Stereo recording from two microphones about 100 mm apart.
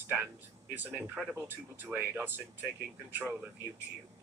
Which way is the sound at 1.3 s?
20° right (ahead or behind).